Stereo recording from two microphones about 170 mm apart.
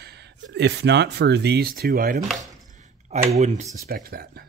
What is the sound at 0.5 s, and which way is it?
Speech, 90° right.